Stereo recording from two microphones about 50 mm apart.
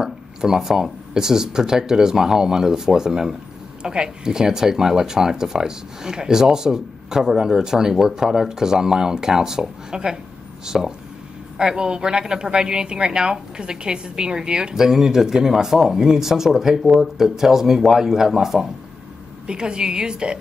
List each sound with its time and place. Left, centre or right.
0.0 s a woman's voice: centre
19.4 s a woman's voice: centre